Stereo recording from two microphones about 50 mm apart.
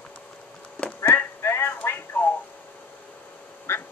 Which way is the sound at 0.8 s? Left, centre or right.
Left.